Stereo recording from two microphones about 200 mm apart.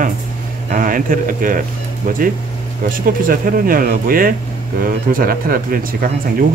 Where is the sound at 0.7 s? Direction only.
45° right (ahead or behind).